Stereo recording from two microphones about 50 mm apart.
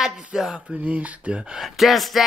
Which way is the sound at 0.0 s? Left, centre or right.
Centre.